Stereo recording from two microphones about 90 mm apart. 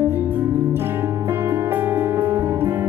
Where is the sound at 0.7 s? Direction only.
25° right (ahead or behind).